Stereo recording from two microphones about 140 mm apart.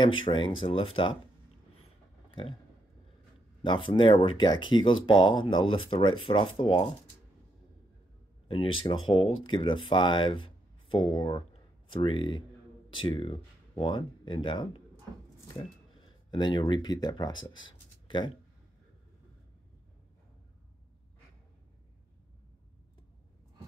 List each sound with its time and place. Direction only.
0.0 s speech: 35° left (ahead or behind)
3.6 s speech: 35° left (ahead or behind)
8.5 s speech: 40° left (ahead or behind)
16.3 s speech: 30° left (ahead or behind)